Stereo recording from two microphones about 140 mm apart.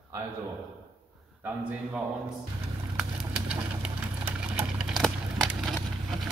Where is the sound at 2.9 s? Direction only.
5° right (ahead or behind).